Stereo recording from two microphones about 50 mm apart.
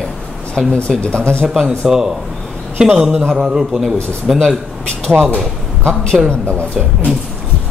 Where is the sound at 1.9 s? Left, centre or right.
Centre.